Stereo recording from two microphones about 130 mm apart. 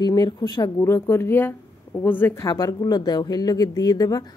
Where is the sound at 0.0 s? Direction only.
30° left (ahead or behind).